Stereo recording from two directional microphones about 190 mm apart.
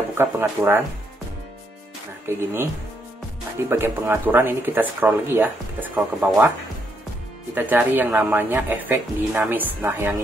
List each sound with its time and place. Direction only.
0.2 s speech: 10° right (ahead or behind)
2.2 s speech: 15° right (ahead or behind)
7.5 s speech: 10° right (ahead or behind)